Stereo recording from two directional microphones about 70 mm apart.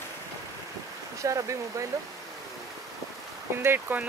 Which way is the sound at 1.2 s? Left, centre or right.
Right.